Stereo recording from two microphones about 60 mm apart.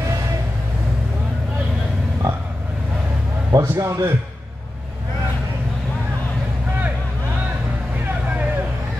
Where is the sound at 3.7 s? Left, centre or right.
Right.